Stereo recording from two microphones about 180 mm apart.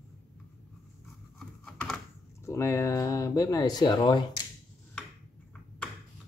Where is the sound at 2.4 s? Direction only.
15° left (ahead or behind).